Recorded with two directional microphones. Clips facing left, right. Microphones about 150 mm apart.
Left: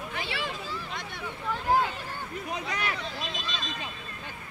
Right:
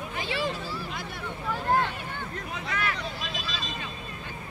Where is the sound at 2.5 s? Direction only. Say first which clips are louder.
Even; 20° left (ahead or behind).